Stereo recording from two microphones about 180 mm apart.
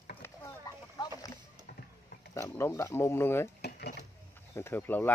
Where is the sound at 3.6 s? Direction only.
65° left (ahead or behind).